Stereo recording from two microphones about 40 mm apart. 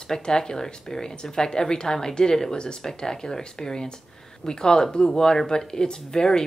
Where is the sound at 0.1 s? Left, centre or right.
Centre.